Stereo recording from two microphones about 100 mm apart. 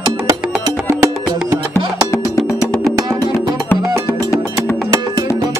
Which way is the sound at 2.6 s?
30° right (ahead or behind).